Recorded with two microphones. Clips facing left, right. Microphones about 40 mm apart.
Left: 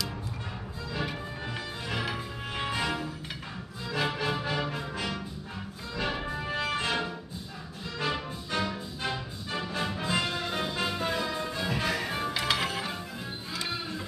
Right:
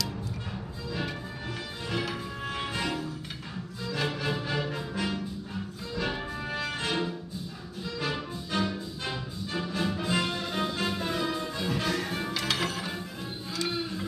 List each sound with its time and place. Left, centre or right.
1.9 s music: centre